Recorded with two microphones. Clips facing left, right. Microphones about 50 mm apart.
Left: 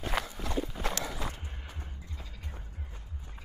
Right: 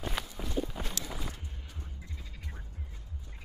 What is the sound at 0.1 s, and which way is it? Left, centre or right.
Clip-clop, left.